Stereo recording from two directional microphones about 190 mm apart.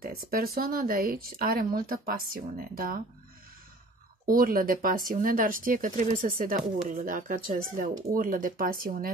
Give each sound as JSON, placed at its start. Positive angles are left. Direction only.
{"t": 0.0, "sound": "speech", "side_deg": -50}
{"t": 4.3, "sound": "speech", "side_deg": -45}